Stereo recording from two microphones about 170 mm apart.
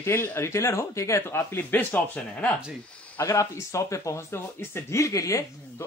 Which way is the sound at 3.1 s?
15° left (ahead or behind).